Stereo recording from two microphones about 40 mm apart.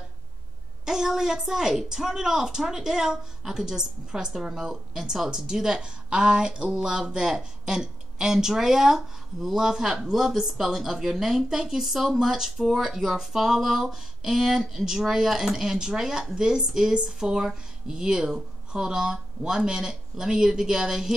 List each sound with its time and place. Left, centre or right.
0.8 s a woman's voice: centre